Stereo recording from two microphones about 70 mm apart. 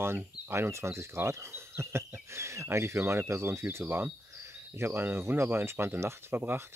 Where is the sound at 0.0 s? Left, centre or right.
Right.